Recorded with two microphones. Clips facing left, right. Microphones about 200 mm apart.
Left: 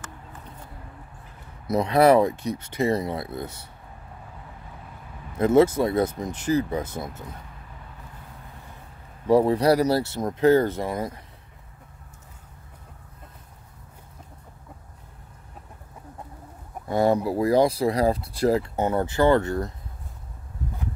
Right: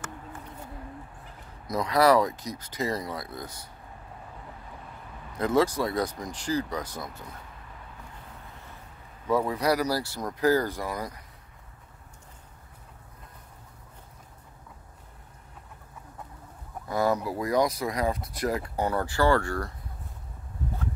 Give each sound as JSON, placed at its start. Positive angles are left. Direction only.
{"t": 1.7, "sound": "speech", "side_deg": 25}
{"t": 5.4, "sound": "speech", "side_deg": 25}
{"t": 9.3, "sound": "speech", "side_deg": 30}
{"t": 16.8, "sound": "speech", "side_deg": 25}